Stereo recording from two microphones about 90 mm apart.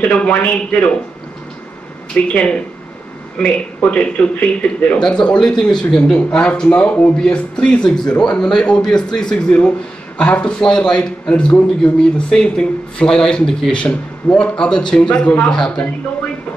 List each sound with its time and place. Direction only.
0.0 s a man's voice: 15° left (ahead or behind)
2.1 s a man's voice: 15° left (ahead or behind)
3.3 s a man's voice: 15° left (ahead or behind)